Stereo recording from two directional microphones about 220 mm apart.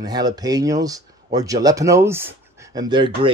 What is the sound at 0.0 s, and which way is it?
A man's voice, 15° right (ahead or behind).